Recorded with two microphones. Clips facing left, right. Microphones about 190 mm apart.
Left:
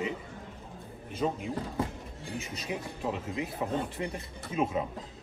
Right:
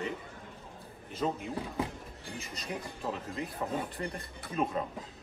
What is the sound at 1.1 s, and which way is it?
A man's voice, centre (ahead or behind).